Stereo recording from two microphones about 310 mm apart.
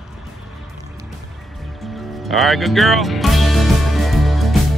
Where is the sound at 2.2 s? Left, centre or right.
Centre.